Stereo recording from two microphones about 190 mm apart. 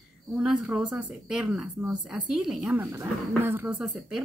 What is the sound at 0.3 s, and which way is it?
A woman's voice, 5° right (ahead or behind).